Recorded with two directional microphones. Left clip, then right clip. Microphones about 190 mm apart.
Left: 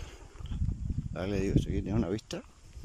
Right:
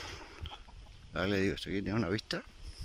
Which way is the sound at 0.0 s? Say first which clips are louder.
Right 6 dB; 5° left (ahead or behind).